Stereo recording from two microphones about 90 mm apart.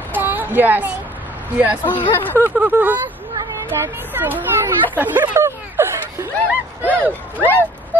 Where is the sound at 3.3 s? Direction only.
35° right (ahead or behind).